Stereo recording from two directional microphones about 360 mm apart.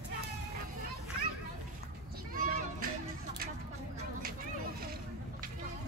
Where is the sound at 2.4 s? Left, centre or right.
Right.